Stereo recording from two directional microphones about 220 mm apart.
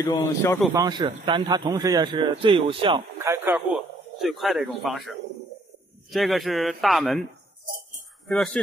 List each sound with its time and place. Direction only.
0.0 s a man's voice: 10° left (ahead or behind)
0.7 s a man's voice: 20° right (ahead or behind)
3.5 s speech: centre (ahead or behind)
8.3 s speech: centre (ahead or behind)